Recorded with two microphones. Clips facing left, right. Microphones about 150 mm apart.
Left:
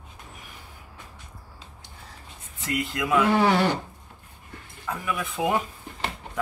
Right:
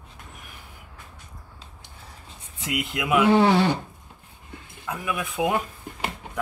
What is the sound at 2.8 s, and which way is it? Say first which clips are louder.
Speech: right 1 dB; 15° right (ahead or behind).